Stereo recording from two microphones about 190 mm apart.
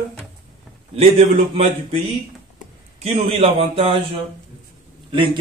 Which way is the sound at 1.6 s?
30° right (ahead or behind).